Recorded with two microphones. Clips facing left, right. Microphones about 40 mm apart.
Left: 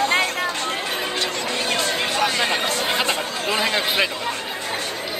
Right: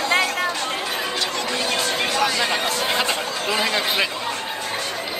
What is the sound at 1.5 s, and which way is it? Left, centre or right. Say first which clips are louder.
Chatter: left 1 dB; left.